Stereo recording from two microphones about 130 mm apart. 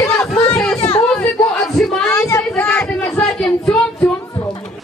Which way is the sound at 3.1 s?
5° left (ahead or behind).